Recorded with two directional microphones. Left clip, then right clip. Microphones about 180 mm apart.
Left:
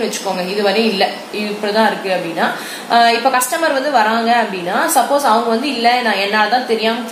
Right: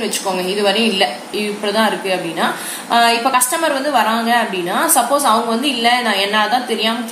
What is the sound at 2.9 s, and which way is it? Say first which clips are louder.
A woman's voice: left 2 dB; 30° left (ahead or behind).